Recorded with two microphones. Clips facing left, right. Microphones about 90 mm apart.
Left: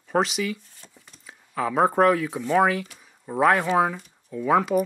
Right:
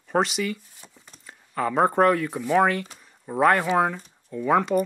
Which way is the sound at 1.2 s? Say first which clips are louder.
Right 1 dB; centre (ahead or behind).